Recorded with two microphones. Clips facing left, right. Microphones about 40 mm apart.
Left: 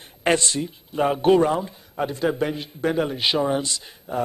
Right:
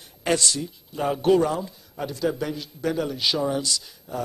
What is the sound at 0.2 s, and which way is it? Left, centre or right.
Speech, left.